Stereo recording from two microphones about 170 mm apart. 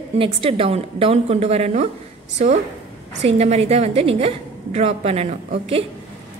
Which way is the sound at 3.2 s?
40° right (ahead or behind).